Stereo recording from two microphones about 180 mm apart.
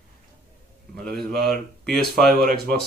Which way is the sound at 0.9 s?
5° left (ahead or behind).